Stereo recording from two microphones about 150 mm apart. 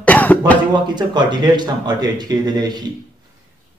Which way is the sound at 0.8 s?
30° right (ahead or behind).